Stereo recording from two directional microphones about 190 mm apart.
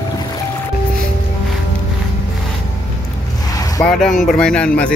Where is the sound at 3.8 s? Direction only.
Centre (ahead or behind).